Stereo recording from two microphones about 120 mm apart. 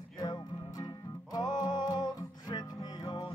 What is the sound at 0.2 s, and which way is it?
Music, 30° left (ahead or behind).